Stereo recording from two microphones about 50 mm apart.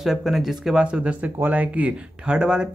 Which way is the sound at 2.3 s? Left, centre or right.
Centre.